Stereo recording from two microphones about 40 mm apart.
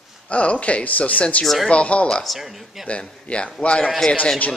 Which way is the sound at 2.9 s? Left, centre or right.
Left.